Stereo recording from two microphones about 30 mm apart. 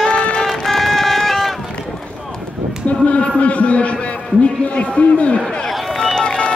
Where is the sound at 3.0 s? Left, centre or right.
Left.